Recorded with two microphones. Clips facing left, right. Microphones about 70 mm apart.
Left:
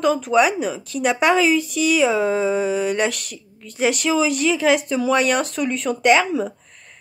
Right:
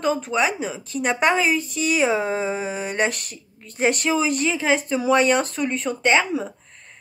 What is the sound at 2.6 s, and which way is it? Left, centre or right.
Speech, right.